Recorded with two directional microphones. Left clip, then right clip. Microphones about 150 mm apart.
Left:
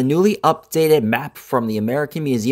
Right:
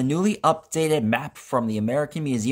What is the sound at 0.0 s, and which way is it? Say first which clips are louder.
Speech: left 6 dB; 45° left (ahead or behind).